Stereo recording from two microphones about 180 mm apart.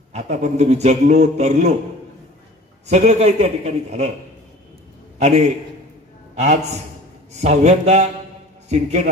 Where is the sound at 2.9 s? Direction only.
40° right (ahead or behind).